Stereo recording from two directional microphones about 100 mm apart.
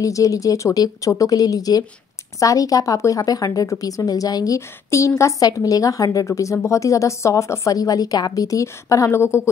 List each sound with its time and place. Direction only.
0.0 s a woman's voice: 35° left (ahead or behind)